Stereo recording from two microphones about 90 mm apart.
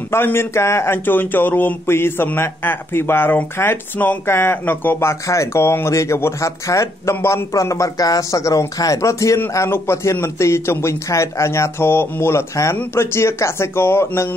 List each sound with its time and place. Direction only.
0.1 s a man's voice: 25° left (ahead or behind)